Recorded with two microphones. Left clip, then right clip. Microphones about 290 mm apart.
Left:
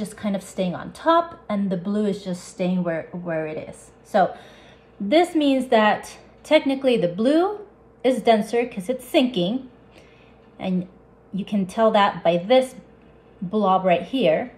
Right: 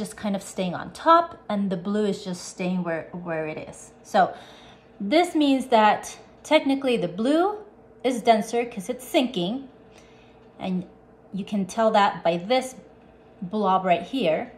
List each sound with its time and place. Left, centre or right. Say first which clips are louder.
0.0 s a woman's voice: left 2 dB; centre
11.3 s a woman's voice: left 2 dB; centre